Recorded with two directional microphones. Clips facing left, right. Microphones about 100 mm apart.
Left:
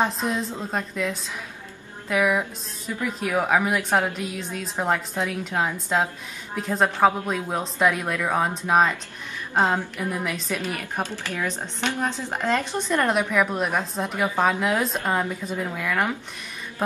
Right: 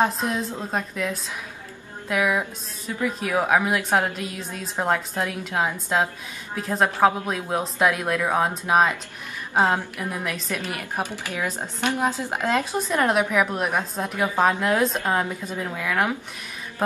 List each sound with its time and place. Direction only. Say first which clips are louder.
0.0 s a woman's voice: right 1 dB; centre (ahead or behind)
9.9 s a woman's voice: left 1 dB; centre (ahead or behind)